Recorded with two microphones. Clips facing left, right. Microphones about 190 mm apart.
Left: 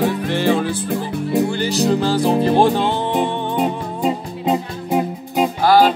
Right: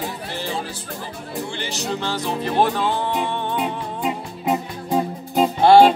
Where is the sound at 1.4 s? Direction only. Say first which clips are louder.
Left 9 dB; 40° left (ahead or behind).